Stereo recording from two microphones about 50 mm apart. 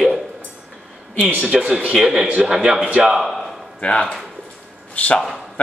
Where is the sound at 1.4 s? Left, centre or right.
Centre.